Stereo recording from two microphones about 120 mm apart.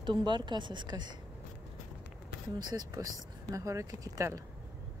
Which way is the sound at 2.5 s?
30° right (ahead or behind).